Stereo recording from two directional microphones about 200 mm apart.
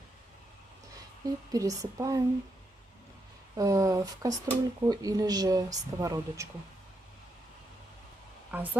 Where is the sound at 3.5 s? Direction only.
15° right (ahead or behind).